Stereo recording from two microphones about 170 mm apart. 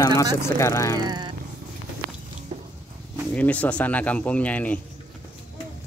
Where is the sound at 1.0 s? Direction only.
25° right (ahead or behind).